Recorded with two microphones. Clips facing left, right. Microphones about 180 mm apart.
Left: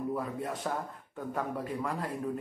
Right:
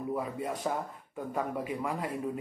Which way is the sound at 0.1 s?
Centre (ahead or behind).